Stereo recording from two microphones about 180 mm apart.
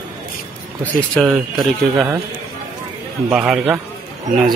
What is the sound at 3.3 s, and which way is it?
Speech, 5° right (ahead or behind).